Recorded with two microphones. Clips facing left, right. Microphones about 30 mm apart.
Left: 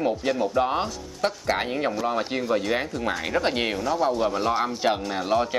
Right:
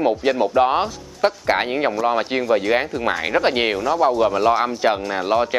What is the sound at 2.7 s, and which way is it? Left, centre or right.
Speech, right.